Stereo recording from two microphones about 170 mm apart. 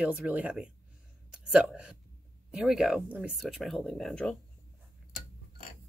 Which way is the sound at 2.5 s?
5° right (ahead or behind).